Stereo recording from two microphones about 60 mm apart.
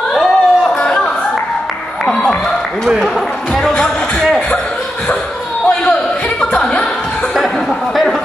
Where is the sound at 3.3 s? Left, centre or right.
Centre.